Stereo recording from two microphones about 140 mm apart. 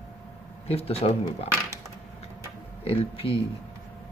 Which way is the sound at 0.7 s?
45° left (ahead or behind).